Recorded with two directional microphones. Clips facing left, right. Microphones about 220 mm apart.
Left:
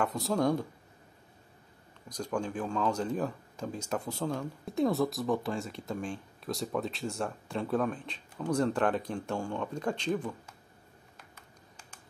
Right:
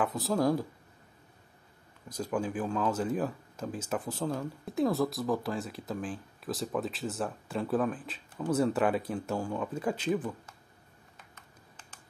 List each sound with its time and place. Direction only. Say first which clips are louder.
0.0 s speech: right 1 dB; centre (ahead or behind)
2.0 s speech: right 1 dB; 5° right (ahead or behind)
11.3 s computer keyboard: left 1 dB; 10° left (ahead or behind)